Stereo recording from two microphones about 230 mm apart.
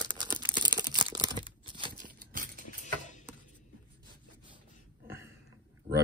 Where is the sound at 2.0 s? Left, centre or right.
Right.